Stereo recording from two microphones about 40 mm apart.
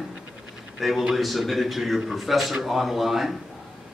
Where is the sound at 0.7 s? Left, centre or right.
Centre.